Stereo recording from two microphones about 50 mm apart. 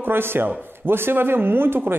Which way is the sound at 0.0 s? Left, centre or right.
Right.